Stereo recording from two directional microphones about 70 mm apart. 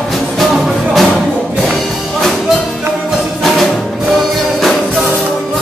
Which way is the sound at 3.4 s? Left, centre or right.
Centre.